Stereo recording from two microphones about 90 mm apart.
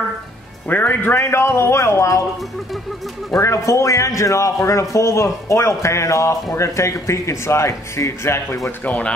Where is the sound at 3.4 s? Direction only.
35° left (ahead or behind).